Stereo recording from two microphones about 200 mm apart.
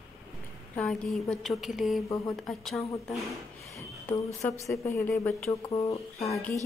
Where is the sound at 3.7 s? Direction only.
15° left (ahead or behind).